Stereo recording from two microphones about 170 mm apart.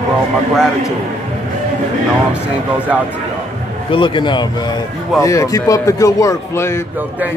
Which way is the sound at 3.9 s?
30° left (ahead or behind).